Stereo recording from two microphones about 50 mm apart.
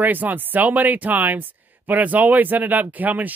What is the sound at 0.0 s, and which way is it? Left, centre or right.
Speech, right.